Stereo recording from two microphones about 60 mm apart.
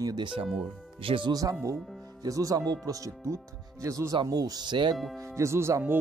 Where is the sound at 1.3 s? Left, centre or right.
Right.